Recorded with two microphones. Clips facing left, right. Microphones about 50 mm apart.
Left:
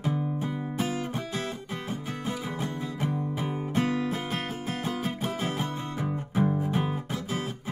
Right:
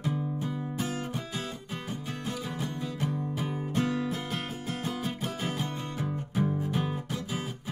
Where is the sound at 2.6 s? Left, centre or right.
Left.